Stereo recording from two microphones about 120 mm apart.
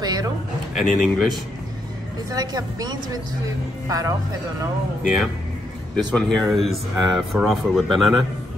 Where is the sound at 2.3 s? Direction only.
35° right (ahead or behind).